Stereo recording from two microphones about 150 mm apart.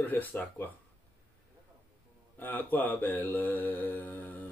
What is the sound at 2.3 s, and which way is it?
Mantra, 10° left (ahead or behind).